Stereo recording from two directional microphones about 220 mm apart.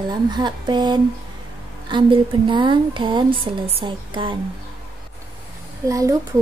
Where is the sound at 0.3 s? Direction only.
20° right (ahead or behind).